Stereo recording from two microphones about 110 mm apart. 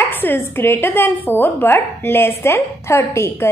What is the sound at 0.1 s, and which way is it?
A woman's voice, 20° left (ahead or behind).